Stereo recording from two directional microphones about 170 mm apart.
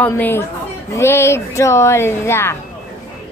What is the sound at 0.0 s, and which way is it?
Speech, 10° left (ahead or behind).